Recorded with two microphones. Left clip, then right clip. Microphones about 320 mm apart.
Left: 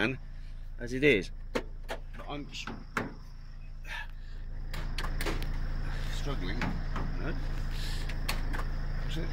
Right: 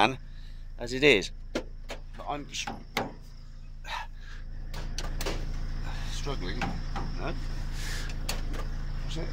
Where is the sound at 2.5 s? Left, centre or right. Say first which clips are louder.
Right 6 dB; right.